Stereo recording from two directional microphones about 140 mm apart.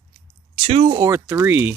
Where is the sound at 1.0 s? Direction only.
20° right (ahead or behind).